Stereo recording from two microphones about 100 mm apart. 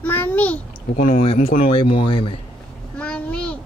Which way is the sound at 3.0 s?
10° left (ahead or behind).